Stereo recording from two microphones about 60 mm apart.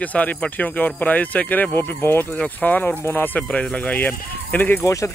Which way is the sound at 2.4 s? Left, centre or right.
Left.